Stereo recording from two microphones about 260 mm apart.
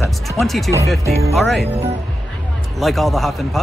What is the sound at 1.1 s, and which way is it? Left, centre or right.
Speech, right.